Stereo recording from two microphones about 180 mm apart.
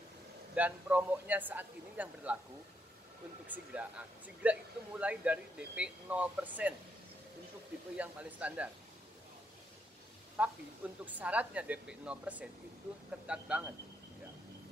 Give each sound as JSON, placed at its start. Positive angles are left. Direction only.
{"t": 0.6, "sound": "speech", "side_deg": -10}
{"t": 3.4, "sound": "speech", "side_deg": -10}
{"t": 8.0, "sound": "speech", "side_deg": -5}
{"t": 10.4, "sound": "a man's voice", "side_deg": -10}